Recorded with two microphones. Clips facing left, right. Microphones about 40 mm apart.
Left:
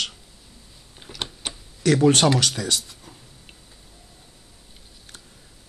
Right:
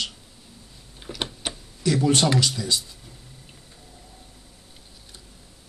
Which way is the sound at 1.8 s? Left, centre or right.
Left.